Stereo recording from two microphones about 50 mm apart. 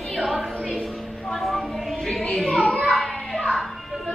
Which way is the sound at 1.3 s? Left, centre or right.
Centre.